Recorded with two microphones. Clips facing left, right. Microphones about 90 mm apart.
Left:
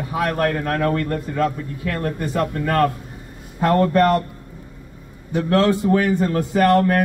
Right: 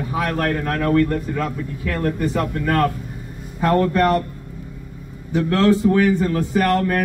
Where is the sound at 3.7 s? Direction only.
20° left (ahead or behind).